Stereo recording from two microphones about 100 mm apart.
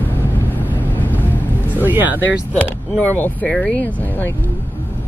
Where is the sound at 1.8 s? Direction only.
20° right (ahead or behind).